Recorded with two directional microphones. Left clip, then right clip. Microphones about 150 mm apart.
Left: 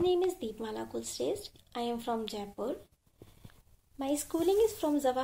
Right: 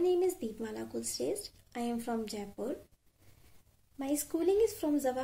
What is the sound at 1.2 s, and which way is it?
Speech, 15° right (ahead or behind).